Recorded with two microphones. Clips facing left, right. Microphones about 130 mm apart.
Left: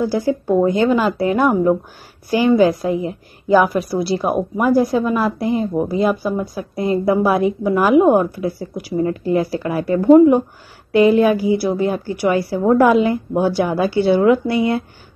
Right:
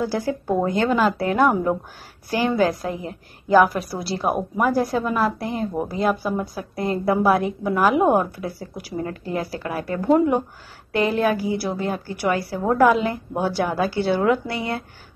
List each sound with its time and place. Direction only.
0.1 s a woman's voice: 5° left (ahead or behind)